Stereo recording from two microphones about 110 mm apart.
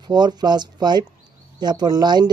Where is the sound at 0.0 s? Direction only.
40° right (ahead or behind).